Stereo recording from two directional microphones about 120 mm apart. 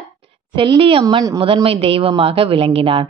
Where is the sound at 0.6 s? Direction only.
50° right (ahead or behind).